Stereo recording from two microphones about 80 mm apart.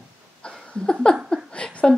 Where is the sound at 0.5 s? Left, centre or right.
Centre.